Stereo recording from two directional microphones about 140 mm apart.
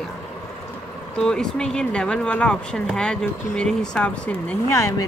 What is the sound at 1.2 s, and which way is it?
Speech, 5° left (ahead or behind).